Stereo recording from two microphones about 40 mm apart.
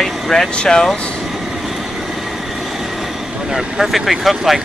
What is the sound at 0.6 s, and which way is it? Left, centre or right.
Speech, centre.